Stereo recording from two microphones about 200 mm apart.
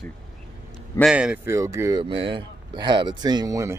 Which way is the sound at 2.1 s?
25° right (ahead or behind).